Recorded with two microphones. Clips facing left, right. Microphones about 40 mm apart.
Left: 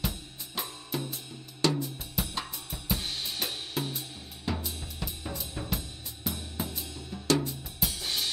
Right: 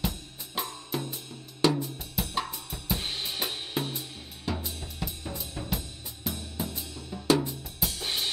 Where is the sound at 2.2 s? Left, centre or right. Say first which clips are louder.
Right 1 dB; centre.